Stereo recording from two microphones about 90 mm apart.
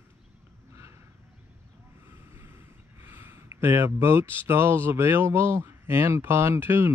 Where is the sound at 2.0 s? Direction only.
25° right (ahead or behind).